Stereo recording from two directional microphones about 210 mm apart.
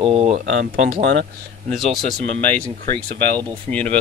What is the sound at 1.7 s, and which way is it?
Speech, centre (ahead or behind).